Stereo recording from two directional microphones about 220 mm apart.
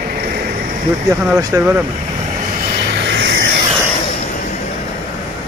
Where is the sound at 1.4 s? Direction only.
10° right (ahead or behind).